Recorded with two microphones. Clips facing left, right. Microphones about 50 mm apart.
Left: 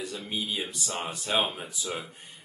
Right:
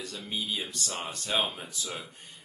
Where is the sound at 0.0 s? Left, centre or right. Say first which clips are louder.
Left 2 dB; centre.